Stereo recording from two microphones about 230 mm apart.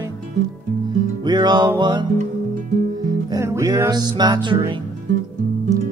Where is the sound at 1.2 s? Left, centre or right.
Centre.